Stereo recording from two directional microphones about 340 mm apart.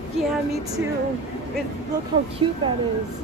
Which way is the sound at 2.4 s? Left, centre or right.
Centre.